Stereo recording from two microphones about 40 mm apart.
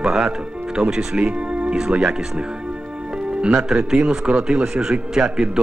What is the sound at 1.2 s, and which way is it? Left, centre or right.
Music, right.